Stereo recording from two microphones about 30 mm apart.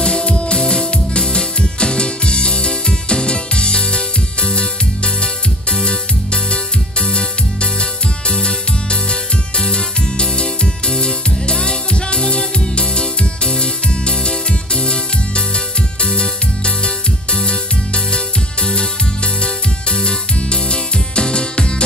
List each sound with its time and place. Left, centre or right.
0.0 s music: left